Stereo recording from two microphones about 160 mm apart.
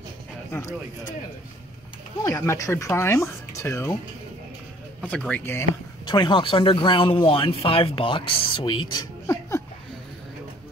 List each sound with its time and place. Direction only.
0.5 s speech: 20° left (ahead or behind)
2.2 s speech: 20° left (ahead or behind)
5.0 s speech: 10° left (ahead or behind)
6.0 s speech: 30° left (ahead or behind)